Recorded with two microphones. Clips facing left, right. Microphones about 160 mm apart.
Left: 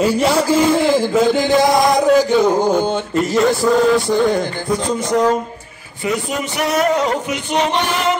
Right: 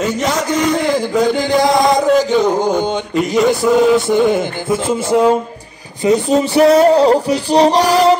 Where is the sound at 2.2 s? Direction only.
10° left (ahead or behind).